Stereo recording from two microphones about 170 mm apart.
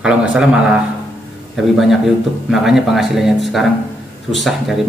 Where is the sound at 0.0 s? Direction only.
5° right (ahead or behind).